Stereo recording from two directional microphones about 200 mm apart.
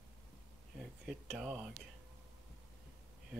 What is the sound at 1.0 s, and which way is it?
Speech, 5° right (ahead or behind).